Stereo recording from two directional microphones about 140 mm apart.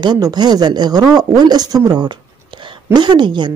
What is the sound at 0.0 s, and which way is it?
A woman's voice, 30° right (ahead or behind).